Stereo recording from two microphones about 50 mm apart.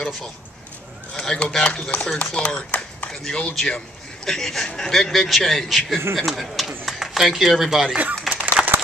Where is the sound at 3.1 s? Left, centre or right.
Centre.